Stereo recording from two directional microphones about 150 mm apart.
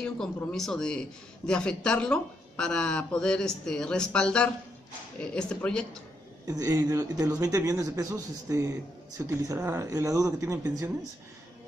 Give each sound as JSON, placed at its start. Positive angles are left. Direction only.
{"t": 0.0, "sound": "a man's voice", "side_deg": 5}
{"t": 6.4, "sound": "speech", "side_deg": -25}